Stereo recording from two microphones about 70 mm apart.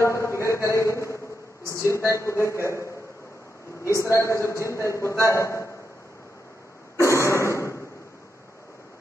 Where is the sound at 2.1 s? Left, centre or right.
Left.